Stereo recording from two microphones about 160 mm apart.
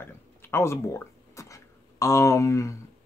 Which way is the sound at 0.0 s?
15° left (ahead or behind).